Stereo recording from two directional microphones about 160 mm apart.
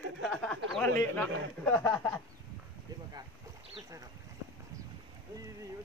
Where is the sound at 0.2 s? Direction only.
5° left (ahead or behind).